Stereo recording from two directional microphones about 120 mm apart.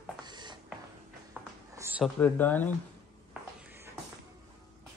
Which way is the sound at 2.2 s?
15° left (ahead or behind).